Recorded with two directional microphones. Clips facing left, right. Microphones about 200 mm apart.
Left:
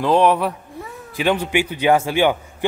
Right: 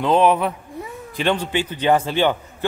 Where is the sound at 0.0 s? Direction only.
Centre (ahead or behind).